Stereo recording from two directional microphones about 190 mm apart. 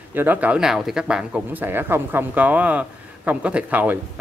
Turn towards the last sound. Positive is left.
turn(degrees=-10)  # may be behind; listen again after turning